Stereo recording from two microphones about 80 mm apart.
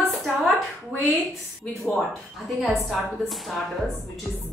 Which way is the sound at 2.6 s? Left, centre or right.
Centre.